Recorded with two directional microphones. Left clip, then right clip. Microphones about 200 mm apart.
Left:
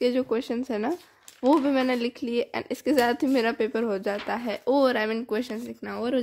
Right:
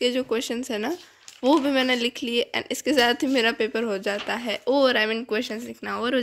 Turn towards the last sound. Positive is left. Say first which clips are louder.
# right 3 dB
turn(degrees=0)  # may be behind; listen again after turning